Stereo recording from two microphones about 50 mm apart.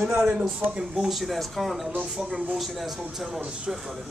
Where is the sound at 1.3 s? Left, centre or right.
Centre.